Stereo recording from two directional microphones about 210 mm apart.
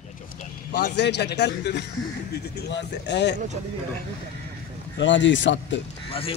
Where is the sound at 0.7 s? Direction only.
55° left (ahead or behind).